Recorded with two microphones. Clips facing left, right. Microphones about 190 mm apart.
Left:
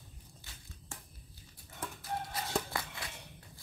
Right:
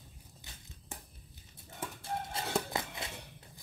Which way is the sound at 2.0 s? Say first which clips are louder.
Right 1 dB; 25° right (ahead or behind).